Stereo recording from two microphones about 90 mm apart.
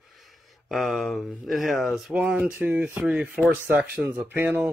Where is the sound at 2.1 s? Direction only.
15° right (ahead or behind).